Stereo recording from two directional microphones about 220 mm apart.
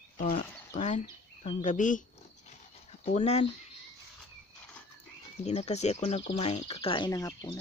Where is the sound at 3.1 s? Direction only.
30° left (ahead or behind).